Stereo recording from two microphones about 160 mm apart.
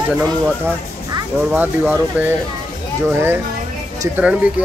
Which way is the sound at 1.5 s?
10° right (ahead or behind).